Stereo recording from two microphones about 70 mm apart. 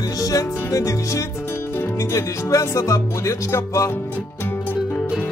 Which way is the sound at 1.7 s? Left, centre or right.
Left.